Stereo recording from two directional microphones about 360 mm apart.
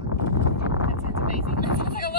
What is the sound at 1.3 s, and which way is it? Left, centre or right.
Vehicle, left.